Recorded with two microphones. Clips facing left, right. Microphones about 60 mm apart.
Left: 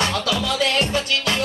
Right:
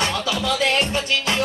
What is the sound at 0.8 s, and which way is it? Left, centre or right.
Music, right.